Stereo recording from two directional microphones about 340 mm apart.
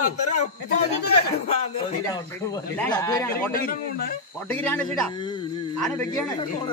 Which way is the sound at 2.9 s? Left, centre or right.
Centre.